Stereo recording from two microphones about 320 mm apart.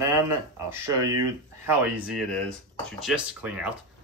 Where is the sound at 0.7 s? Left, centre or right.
Centre.